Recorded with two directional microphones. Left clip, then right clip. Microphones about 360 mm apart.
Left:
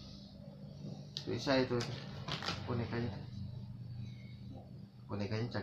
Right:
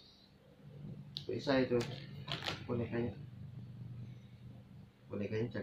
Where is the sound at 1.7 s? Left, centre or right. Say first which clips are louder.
Right 3 dB; centre.